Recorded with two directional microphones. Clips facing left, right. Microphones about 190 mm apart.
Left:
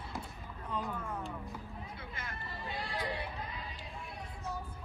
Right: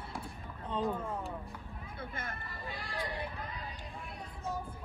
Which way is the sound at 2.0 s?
50° right (ahead or behind).